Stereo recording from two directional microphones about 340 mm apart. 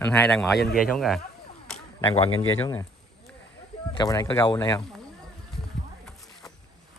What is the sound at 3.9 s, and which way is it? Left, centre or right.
Speech, centre.